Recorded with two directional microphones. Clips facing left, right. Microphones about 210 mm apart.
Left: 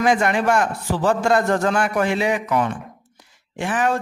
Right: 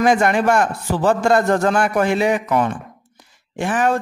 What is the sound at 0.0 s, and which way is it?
A man's voice, 45° right (ahead or behind).